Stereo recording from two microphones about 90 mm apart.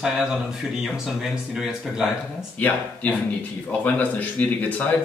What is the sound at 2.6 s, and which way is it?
A man's voice, 20° left (ahead or behind).